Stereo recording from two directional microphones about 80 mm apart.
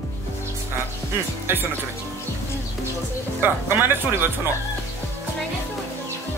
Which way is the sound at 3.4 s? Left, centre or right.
Right.